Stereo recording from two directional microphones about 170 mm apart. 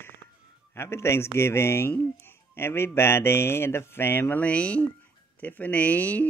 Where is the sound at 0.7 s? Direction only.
15° left (ahead or behind).